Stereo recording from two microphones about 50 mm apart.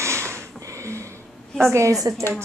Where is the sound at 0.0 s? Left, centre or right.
Right.